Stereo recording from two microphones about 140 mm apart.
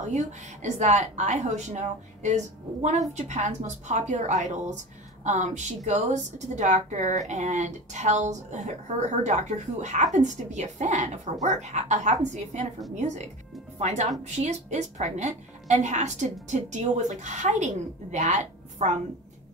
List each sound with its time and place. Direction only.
0.6 s a woman's voice: 55° right (ahead or behind)